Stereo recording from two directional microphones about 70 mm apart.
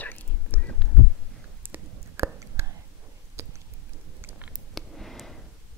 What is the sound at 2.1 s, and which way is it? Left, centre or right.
Whispering, right.